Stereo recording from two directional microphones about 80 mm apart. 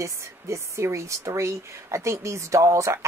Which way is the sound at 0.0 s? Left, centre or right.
Right.